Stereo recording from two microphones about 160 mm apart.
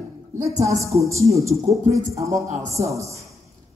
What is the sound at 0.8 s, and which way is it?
Speech, 20° right (ahead or behind).